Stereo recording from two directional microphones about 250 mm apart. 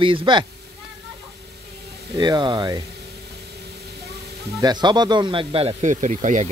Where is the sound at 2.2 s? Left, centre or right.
Centre.